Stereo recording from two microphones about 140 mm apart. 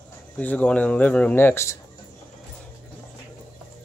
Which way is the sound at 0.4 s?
10° left (ahead or behind).